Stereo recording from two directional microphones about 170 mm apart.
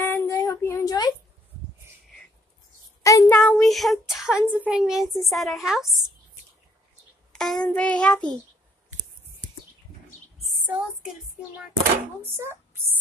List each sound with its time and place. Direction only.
0.0 s a sound: 15° left (ahead or behind)
3.0 s child singing: 20° left (ahead or behind)
3.3 s child singing: 5° left (ahead or behind)
4.1 s a woman's voice: 5° right (ahead or behind)
7.3 s child singing: centre (ahead or behind)
10.6 s a sound: 10° right (ahead or behind)
12.2 s speech: 15° right (ahead or behind)